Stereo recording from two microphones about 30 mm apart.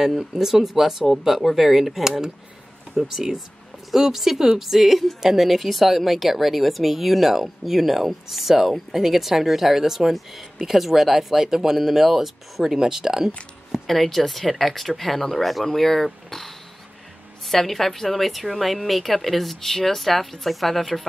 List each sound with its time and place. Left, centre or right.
0.2 s speech: centre
13.8 s speech: centre